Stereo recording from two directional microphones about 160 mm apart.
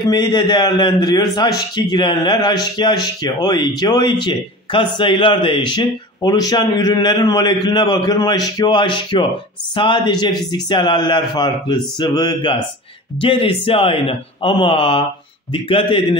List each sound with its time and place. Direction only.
0.0 s a man's voice: 25° left (ahead or behind)